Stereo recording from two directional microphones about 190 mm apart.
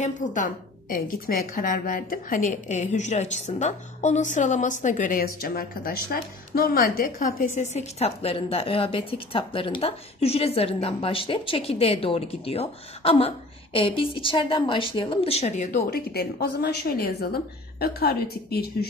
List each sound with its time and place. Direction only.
0.0 s a woman's voice: 40° left (ahead or behind)